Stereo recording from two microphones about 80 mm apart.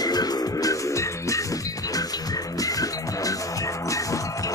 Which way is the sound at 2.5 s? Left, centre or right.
Left.